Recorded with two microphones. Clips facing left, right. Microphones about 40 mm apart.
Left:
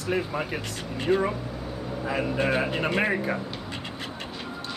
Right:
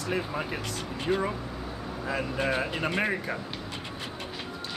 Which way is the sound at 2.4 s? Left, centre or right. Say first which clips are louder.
Left 2 dB; centre.